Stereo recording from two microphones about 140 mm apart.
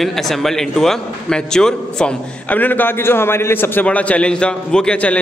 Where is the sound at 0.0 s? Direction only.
Centre (ahead or behind).